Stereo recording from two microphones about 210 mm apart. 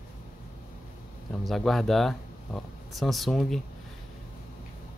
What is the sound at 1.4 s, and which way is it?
Speech, centre (ahead or behind).